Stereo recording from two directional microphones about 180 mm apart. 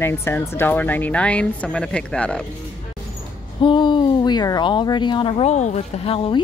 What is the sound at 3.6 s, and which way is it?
Speech, 25° left (ahead or behind).